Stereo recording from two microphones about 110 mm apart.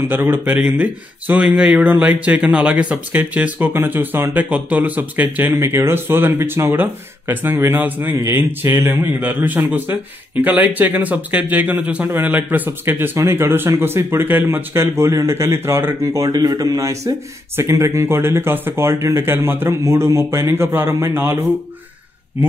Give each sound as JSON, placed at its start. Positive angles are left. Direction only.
{"t": 0.1, "sound": "speech", "side_deg": -20}